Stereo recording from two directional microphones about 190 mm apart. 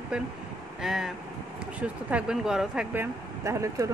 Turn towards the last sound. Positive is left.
turn(degrees=-15)  # may be behind; listen again after turning